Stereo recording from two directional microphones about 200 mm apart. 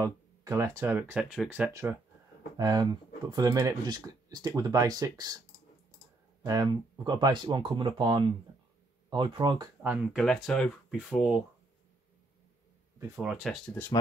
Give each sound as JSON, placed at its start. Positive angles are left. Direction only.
{"t": 0.0, "sound": "speech", "side_deg": -15}
{"t": 6.4, "sound": "speech", "side_deg": -20}
{"t": 9.8, "sound": "speech", "side_deg": 0}
{"t": 13.1, "sound": "speech", "side_deg": -5}